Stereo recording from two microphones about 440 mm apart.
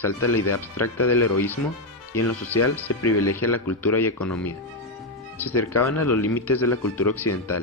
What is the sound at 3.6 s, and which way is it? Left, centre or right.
Speech, centre.